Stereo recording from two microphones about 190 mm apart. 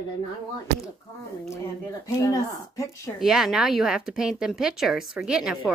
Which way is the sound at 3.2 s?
Centre (ahead or behind).